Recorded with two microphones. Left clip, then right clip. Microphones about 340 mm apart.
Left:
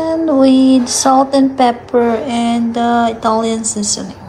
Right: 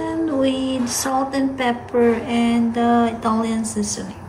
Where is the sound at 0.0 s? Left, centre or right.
Centre.